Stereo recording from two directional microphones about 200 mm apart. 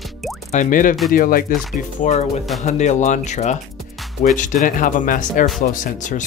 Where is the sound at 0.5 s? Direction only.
40° left (ahead or behind).